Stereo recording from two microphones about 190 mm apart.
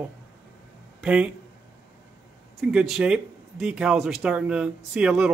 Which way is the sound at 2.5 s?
Centre (ahead or behind).